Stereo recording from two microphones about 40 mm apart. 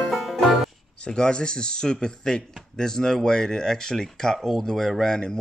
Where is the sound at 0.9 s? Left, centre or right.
Left.